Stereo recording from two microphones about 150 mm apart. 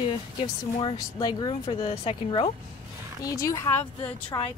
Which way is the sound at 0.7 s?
30° left (ahead or behind).